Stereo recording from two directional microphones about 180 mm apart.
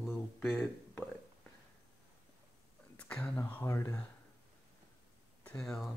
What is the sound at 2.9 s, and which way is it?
Speech, 10° left (ahead or behind).